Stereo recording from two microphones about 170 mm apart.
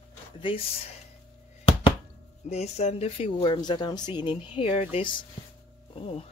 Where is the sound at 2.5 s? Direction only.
40° left (ahead or behind).